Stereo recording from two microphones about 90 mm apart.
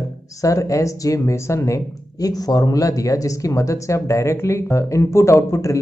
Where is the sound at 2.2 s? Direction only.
45° left (ahead or behind).